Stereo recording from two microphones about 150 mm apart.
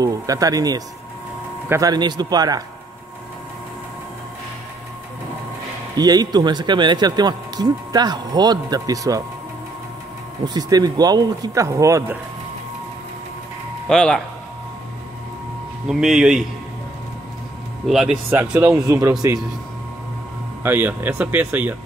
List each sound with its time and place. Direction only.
0.0 s speech: 25° right (ahead or behind)
5.9 s speech: 25° right (ahead or behind)
10.4 s speech: 25° right (ahead or behind)
13.8 s speech: 5° left (ahead or behind)
15.9 s speech: 5° right (ahead or behind)
17.8 s speech: centre (ahead or behind)
18.7 s speech: 20° right (ahead or behind)
20.6 s speech: 15° right (ahead or behind)